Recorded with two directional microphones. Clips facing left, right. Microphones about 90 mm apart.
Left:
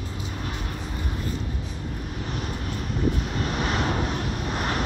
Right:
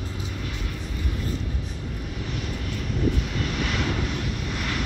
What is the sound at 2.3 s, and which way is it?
Vehicle, 40° left (ahead or behind).